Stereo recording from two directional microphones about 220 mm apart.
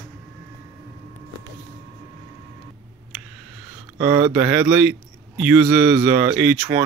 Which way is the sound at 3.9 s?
5° right (ahead or behind).